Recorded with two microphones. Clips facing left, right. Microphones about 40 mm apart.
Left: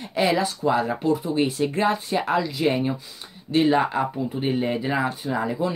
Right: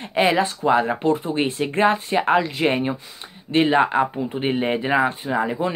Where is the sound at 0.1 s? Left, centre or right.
Right.